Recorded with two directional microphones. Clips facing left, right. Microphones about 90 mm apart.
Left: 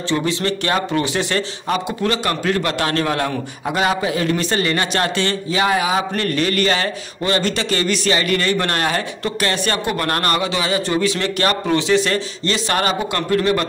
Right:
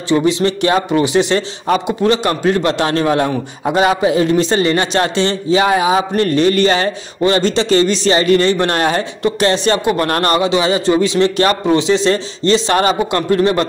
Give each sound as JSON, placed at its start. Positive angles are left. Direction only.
{"t": 0.1, "sound": "a man's voice", "side_deg": -20}